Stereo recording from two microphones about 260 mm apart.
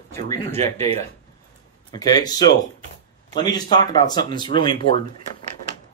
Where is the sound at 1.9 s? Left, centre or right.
Centre.